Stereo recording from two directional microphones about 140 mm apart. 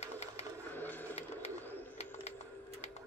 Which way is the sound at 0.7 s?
15° left (ahead or behind).